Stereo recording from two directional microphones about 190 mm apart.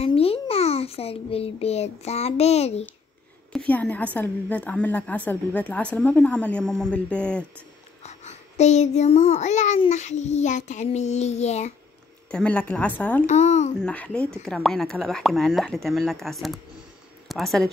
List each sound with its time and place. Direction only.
0.0 s a child's voice: 30° left (ahead or behind)
3.5 s a woman's voice: 5° left (ahead or behind)
8.0 s child singing: 35° left (ahead or behind)
12.3 s a woman's voice: 5° left (ahead or behind)
13.3 s child singing: 35° left (ahead or behind)
13.7 s a woman's voice: 5° left (ahead or behind)